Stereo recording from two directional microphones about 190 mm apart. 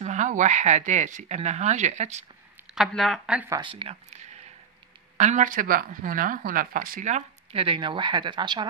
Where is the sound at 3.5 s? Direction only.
25° right (ahead or behind).